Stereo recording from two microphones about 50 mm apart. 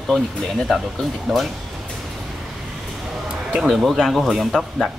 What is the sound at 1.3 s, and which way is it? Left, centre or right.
Speech, centre.